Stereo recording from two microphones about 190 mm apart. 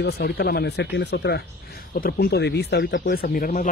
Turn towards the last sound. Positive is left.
turn(degrees=45)  # may be behind; listen again after turning